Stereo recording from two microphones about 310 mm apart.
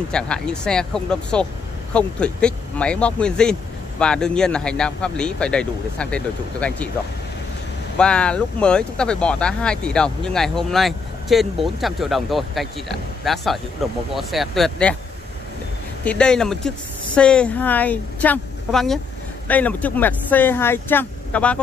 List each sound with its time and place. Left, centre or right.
0.1 s speech: centre
8.0 s speech: centre
16.0 s speech: centre